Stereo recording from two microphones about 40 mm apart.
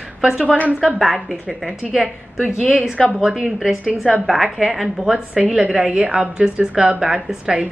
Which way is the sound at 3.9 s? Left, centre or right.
Right.